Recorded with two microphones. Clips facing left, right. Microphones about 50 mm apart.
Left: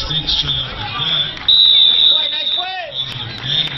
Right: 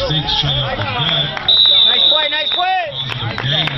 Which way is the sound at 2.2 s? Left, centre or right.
Right.